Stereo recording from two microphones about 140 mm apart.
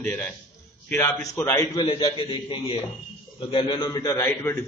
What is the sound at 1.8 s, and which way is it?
A man's voice, 35° left (ahead or behind).